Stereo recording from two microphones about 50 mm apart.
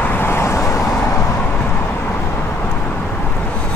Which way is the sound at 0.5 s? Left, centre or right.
Left.